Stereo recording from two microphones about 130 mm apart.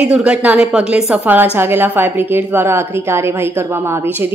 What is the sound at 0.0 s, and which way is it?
A woman's voice, 10° right (ahead or behind).